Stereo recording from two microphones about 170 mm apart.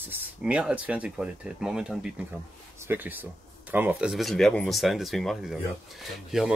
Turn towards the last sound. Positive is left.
turn(degrees=-5)  # may be behind; listen again after turning